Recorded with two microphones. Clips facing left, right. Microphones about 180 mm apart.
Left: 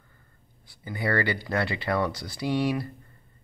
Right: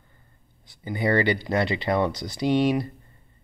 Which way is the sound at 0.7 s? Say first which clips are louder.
Right 5 dB; 20° right (ahead or behind).